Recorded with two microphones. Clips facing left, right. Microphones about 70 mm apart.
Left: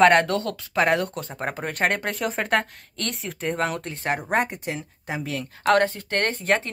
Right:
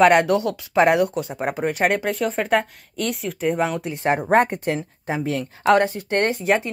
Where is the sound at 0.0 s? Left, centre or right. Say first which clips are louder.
Right 2 dB; centre.